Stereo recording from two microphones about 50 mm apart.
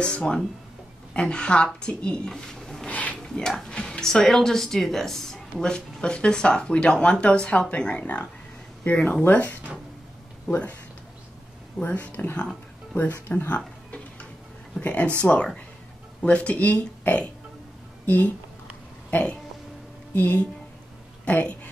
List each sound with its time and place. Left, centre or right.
0.0 s speech: centre
2.9 s a sound: left
3.2 s speech: centre; by 10.8 s left
11.8 s speech: left
12.1 s speech: left
14.8 s speech: left